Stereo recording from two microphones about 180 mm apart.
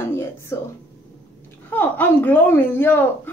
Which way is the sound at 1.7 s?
10° left (ahead or behind).